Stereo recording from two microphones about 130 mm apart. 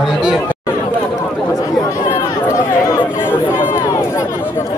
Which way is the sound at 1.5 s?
20° left (ahead or behind).